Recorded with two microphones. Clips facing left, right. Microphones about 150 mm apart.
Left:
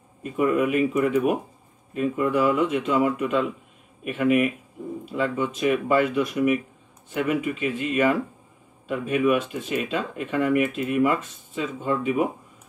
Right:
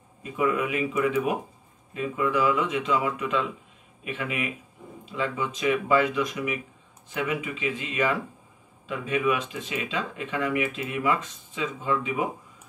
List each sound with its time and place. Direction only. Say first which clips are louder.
0.2 s speech: left 4 dB; 55° left (ahead or behind)